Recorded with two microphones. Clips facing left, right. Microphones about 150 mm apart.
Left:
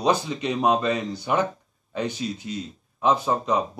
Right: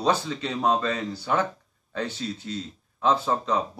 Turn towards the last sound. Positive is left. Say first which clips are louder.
# left 2 dB
turn(degrees=15)  # may be behind; listen again after turning